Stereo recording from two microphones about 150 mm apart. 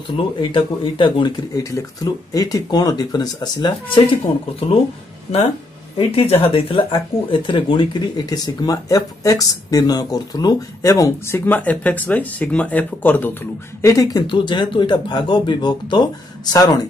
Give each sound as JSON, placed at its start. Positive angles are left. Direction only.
{"t": 0.4, "sound": "speech", "side_deg": 35}
{"t": 5.9, "sound": "speech", "side_deg": 45}
{"t": 13.8, "sound": "speech", "side_deg": 25}